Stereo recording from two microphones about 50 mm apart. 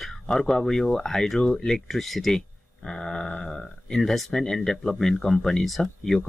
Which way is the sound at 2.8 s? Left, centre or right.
Centre.